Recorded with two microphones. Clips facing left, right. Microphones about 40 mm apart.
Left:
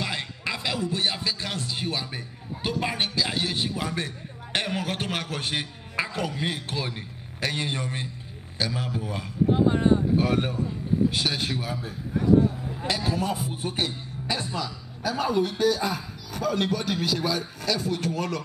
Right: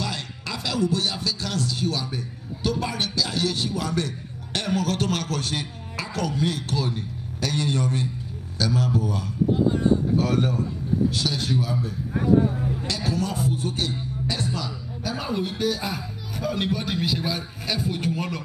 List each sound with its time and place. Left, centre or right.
0.0 s a man's voice: left
14.6 s speech: centre